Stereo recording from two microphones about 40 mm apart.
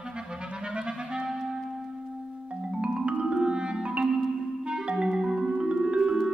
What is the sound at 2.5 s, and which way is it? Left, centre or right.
Music, right.